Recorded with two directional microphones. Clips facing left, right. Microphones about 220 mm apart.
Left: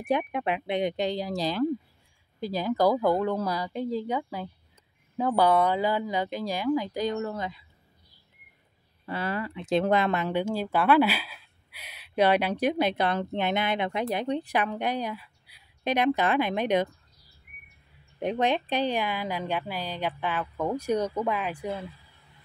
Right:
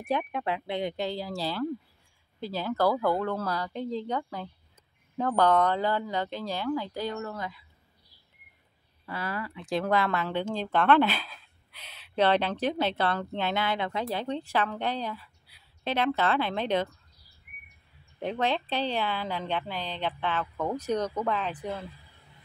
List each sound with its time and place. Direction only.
0.0 s speech: 15° left (ahead or behind)
9.0 s speech: 25° left (ahead or behind)
18.2 s speech: 15° left (ahead or behind)